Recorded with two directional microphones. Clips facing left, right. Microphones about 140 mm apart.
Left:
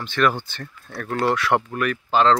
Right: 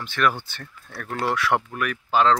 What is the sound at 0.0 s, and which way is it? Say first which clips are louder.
Speech: left 3 dB; 5° right (ahead or behind).